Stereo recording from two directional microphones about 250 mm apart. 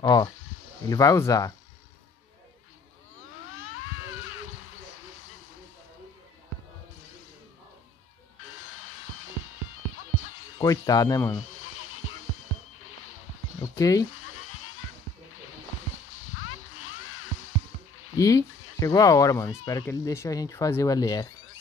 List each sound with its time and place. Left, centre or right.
0.0 s speech: centre
0.3 s snake: left
0.8 s speech: centre
3.4 s cat: left
8.5 s music: left
10.6 s speech: centre
11.5 s a sound: left
13.7 s speech: centre
14.1 s bleat: left
16.1 s music: left
18.1 s speech: centre